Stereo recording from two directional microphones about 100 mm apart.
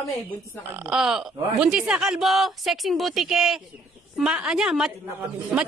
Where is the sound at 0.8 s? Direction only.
5° right (ahead or behind).